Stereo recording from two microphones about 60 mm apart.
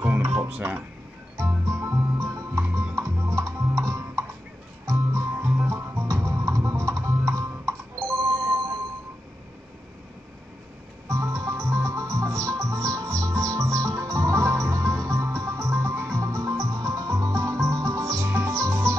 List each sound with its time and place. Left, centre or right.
0.0 s music: right
0.6 s speech: right
1.3 s music: right
2.7 s music: right
11.1 s music: right
18.2 s music: right
18.5 s music: right